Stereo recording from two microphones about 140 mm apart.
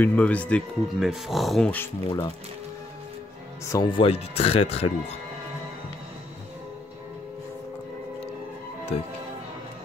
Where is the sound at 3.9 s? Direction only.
40° left (ahead or behind).